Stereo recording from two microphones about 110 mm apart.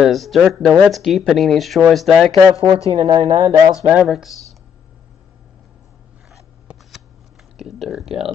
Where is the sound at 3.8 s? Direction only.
10° right (ahead or behind).